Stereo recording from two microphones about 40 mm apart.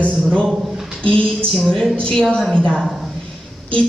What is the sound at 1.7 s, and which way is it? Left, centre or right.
Speech, centre.